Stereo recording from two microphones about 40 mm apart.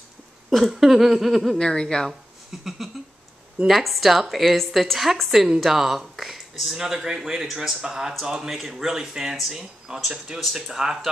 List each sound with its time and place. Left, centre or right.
0.5 s a woman's voice: centre
1.6 s a woman's voice: centre
2.5 s a woman's voice: centre